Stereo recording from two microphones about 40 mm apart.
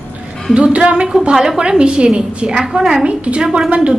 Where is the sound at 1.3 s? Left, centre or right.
Centre.